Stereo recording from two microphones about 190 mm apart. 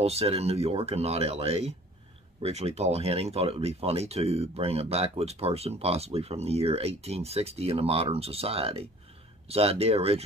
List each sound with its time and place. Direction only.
0.0 s speech: 35° right (ahead or behind)